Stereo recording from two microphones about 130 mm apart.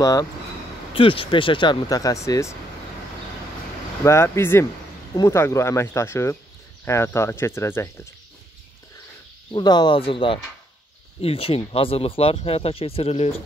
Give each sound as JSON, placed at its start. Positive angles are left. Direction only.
{"t": 0.0, "sound": "speech", "side_deg": 25}
{"t": 0.9, "sound": "speech", "side_deg": 45}
{"t": 4.0, "sound": "speech", "side_deg": 20}
{"t": 9.5, "sound": "speech", "side_deg": 35}